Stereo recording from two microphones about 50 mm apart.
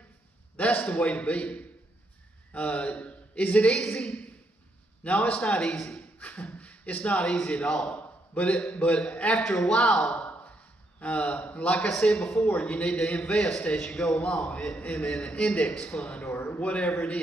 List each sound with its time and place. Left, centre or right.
0.6 s a man's voice: left
3.7 s a man's voice: centre
5.0 s a man's voice: left
6.1 s a sound: left
7.2 s a man's voice: centre
8.0 s a sound: left
8.7 s a man's voice: left
9.4 s a man's voice: centre
11.0 s a man's voice: left
11.9 s a man's voice: centre
12.4 s a man's voice: left
15.7 s a man's voice: centre
16.5 s a man's voice: left